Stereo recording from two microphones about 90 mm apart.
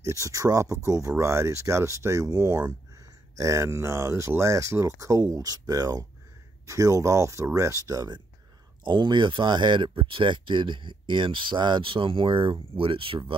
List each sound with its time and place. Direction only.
0.0 s speech: 35° right (ahead or behind)
8.8 s speech: 60° right (ahead or behind); by 13.4 s 75° right (ahead or behind)